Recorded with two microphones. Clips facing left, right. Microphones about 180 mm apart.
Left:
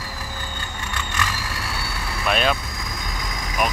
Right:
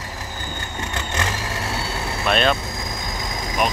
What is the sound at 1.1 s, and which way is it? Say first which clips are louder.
Vehicle: right 3 dB; 25° right (ahead or behind).